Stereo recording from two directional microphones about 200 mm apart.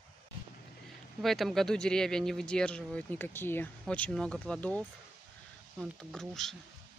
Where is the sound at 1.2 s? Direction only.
Centre (ahead or behind).